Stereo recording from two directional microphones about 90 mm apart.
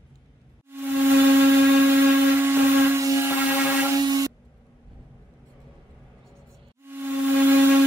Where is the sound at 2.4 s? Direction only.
25° right (ahead or behind).